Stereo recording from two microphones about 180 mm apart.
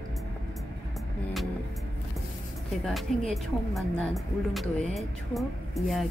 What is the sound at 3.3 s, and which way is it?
Speech, centre (ahead or behind).